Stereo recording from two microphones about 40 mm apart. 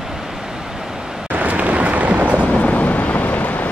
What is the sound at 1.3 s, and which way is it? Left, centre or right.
Vehicle, right.